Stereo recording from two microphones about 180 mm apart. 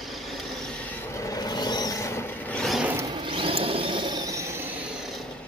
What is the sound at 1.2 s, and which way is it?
Vehicle, 20° left (ahead or behind).